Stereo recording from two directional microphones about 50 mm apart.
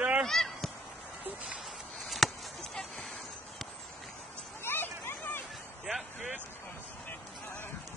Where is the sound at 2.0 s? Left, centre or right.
Centre.